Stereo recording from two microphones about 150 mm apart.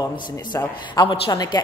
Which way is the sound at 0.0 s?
30° left (ahead or behind).